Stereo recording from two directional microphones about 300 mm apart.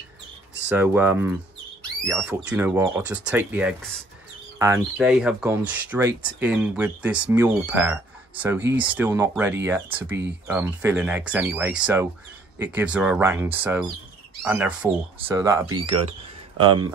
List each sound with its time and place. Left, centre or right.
0.7 s speech: centre